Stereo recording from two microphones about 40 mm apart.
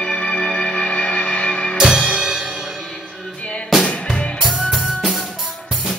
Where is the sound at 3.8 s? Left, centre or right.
Left.